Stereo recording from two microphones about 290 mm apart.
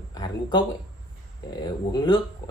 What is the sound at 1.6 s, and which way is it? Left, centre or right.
Speech, centre.